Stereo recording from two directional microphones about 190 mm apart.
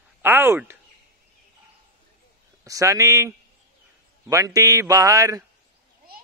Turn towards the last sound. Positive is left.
turn(degrees=-15)  # may be behind; listen again after turning